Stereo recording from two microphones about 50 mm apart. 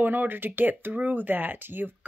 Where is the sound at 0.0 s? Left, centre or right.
Right.